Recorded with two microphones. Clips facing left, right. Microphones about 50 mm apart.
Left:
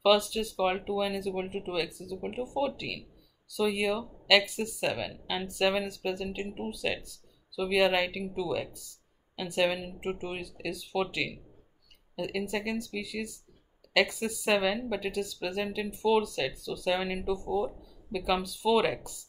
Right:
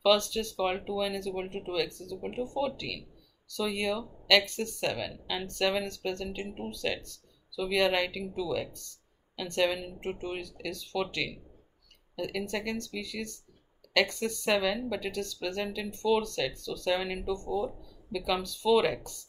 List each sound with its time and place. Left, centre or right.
0.0 s speech: centre